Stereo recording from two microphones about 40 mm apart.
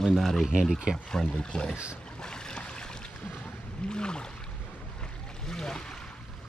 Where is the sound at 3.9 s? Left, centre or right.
Left.